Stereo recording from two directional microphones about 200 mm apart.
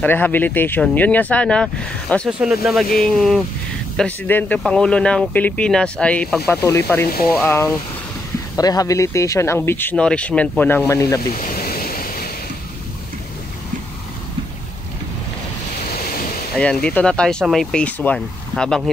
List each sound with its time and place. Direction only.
0.0 s speech: 10° left (ahead or behind)
11.2 s ocean: 45° left (ahead or behind)
16.5 s speech: 5° left (ahead or behind)